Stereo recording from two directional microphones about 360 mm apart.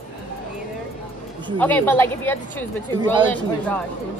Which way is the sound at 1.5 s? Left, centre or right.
Centre.